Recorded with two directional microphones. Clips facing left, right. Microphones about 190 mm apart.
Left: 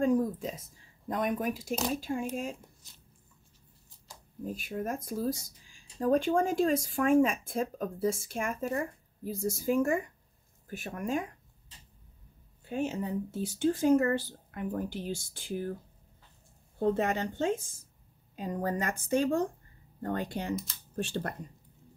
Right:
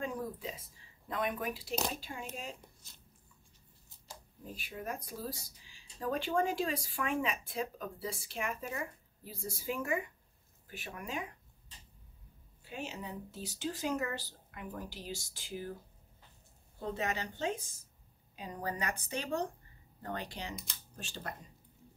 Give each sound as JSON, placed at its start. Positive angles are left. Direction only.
{"t": 0.0, "sound": "speech", "side_deg": 45}
{"t": 4.6, "sound": "speech", "side_deg": 45}
{"t": 12.6, "sound": "speech", "side_deg": 50}
{"t": 16.8, "sound": "speech", "side_deg": 50}